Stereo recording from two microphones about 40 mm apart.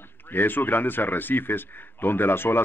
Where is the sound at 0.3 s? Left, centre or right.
Left.